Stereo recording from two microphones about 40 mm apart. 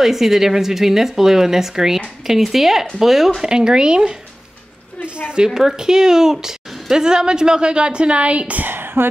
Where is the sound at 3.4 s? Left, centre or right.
Centre.